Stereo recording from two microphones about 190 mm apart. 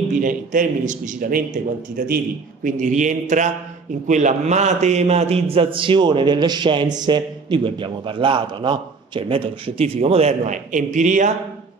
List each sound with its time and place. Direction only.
0.2 s a man's voice: 45° right (ahead or behind)